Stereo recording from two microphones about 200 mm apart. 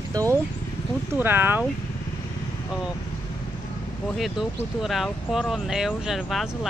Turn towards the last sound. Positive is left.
turn(degrees=0)  # may be behind; listen again after turning